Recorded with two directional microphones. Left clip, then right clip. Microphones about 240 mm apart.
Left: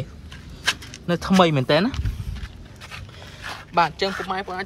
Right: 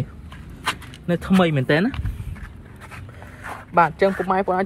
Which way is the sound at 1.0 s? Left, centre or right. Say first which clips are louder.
Left 2 dB; left.